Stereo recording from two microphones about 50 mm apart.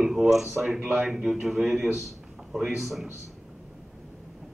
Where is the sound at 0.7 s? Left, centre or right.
Right.